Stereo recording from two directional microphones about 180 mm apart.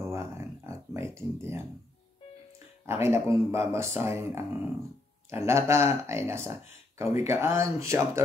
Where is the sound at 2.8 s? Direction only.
15° right (ahead or behind).